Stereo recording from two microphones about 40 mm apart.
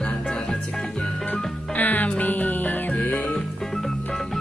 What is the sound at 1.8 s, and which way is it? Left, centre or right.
Music, left.